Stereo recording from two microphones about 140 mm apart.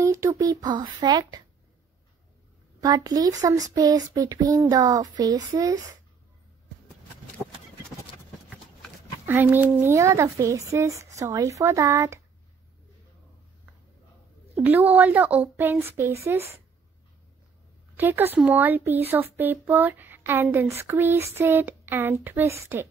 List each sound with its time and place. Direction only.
0.0 s speech: 20° right (ahead or behind)
2.8 s speech: 30° right (ahead or behind)
9.2 s speech: 15° right (ahead or behind)
14.6 s speech: 10° right (ahead or behind)
17.9 s speech: 15° right (ahead or behind)